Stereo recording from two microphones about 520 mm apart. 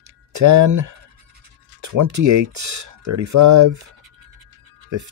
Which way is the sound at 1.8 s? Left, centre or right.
Right.